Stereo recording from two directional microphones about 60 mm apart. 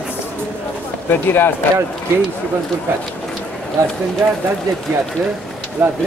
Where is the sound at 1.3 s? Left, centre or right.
Left.